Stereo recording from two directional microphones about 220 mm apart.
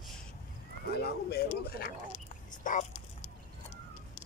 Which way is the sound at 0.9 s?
45° left (ahead or behind).